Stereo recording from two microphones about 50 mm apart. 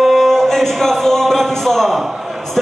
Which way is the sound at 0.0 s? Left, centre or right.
Centre.